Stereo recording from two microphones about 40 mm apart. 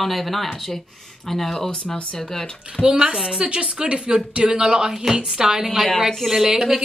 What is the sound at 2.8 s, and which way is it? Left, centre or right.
Speech, right.